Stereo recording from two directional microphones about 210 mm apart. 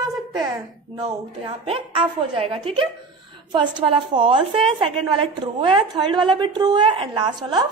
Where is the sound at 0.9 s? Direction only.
25° right (ahead or behind).